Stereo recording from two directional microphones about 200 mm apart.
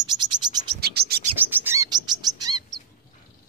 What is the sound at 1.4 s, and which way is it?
Bird, 10° right (ahead or behind).